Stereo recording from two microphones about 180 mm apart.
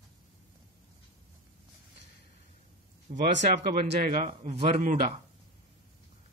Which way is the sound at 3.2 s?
70° right (ahead or behind).